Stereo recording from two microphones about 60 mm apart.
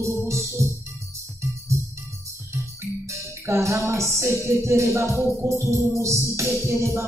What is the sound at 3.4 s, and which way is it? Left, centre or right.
Music, right.